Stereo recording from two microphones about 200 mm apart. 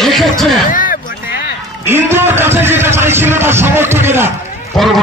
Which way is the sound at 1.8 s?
10° right (ahead or behind).